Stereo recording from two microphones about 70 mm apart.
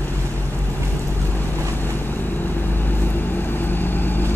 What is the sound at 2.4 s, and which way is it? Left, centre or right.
Vehicle, left.